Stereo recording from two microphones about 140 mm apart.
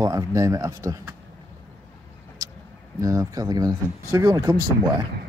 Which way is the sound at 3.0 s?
25° right (ahead or behind).